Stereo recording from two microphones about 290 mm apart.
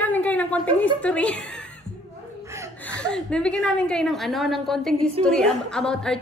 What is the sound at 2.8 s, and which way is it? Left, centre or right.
A woman's voice, centre.